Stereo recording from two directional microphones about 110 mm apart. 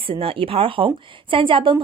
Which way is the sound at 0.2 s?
60° right (ahead or behind).